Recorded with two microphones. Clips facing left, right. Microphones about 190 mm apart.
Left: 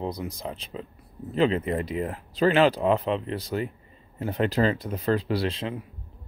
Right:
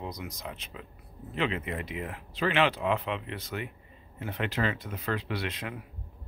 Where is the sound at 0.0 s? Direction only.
30° left (ahead or behind).